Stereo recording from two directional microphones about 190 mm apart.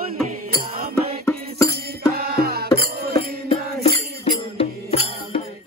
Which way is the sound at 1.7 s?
55° right (ahead or behind).